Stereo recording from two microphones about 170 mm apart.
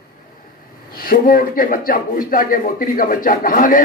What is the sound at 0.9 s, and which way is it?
Speech, 55° left (ahead or behind).